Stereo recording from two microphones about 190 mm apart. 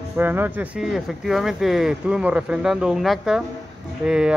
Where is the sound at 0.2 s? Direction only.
10° right (ahead or behind).